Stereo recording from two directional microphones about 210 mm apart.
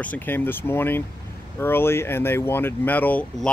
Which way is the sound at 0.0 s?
10° left (ahead or behind).